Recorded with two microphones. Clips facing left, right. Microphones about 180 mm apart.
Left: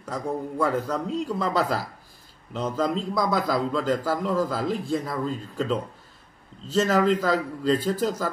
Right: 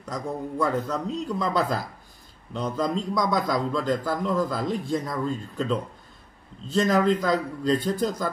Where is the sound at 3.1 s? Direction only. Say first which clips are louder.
Left 1 dB; centre (ahead or behind).